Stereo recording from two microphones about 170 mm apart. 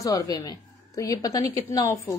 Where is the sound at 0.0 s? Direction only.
20° left (ahead or behind).